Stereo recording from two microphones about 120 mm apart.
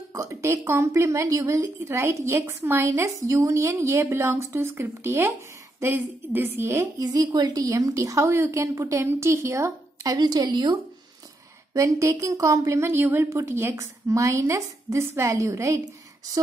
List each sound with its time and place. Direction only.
0.1 s a woman's voice: 25° right (ahead or behind)
11.7 s a woman's voice: 25° right (ahead or behind)